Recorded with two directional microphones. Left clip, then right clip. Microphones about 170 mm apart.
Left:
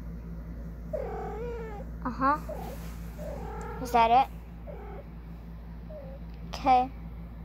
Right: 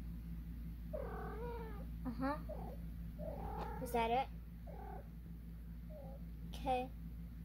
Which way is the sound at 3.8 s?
10° right (ahead or behind).